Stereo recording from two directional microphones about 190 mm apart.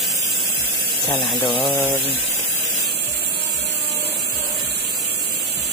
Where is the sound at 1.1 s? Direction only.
30° left (ahead or behind).